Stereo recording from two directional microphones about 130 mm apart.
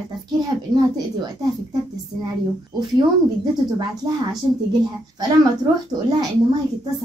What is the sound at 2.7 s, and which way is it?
Speech, 35° right (ahead or behind).